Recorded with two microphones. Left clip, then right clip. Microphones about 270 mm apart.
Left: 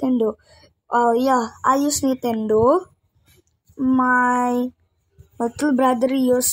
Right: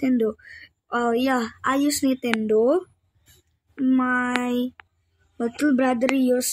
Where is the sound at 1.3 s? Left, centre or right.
Centre.